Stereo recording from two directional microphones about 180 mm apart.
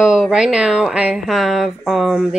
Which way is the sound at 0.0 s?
5° right (ahead or behind).